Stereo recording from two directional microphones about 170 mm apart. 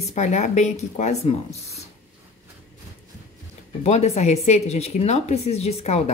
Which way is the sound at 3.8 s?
40° left (ahead or behind).